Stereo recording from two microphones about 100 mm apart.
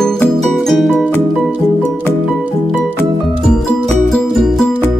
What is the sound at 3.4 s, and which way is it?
Music, 5° left (ahead or behind).